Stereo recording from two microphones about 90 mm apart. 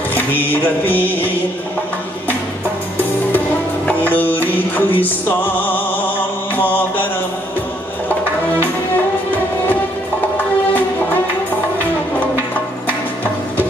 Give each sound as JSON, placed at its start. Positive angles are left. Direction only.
{"t": 0.1, "sound": "music", "side_deg": 20}
{"t": 3.0, "sound": "music", "side_deg": 20}